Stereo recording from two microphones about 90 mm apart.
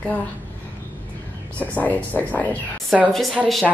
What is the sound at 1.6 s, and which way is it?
Speech, 15° left (ahead or behind).